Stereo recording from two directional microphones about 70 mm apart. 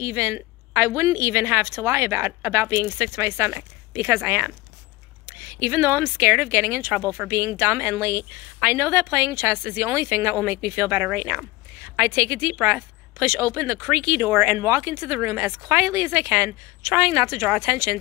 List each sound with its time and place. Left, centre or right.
0.0 s a woman's voice: right
4.2 s speech: right
5.4 s a woman's voice: right
10.9 s speech: right
12.1 s a woman's voice: right
12.5 s speech: right
13.2 s a woman's voice: right